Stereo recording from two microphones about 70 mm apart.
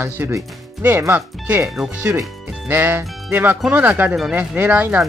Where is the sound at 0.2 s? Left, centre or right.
Right.